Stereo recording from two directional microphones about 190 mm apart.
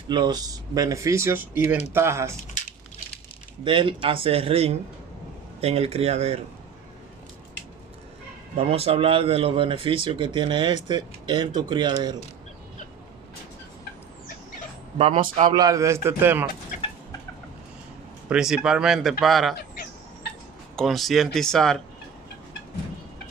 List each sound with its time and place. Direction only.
0.1 s speech: 20° right (ahead or behind)
3.6 s speech: 25° right (ahead or behind)
8.5 s speech: 30° right (ahead or behind)
15.0 s speech: 30° right (ahead or behind)
15.2 s speech: 40° right (ahead or behind)
15.5 s speech: 20° right (ahead or behind)
18.3 s speech: 5° right (ahead or behind)
20.7 s speech: centre (ahead or behind)